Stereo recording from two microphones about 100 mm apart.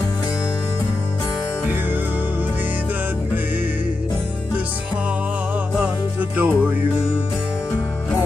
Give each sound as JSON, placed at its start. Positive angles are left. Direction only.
{"t": 6.3, "sound": "music", "side_deg": -15}